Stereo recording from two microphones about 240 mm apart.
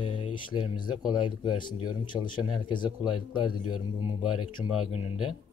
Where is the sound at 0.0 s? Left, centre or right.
Left.